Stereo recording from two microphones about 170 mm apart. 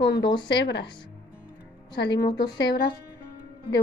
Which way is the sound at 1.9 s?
85° left.